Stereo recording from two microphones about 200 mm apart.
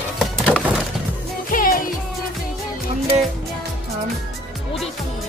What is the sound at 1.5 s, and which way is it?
Music, 45° left (ahead or behind).